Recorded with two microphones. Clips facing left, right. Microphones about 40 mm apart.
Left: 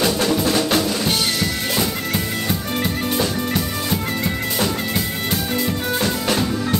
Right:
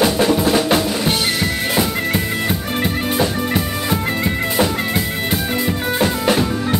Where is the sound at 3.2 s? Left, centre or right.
Centre.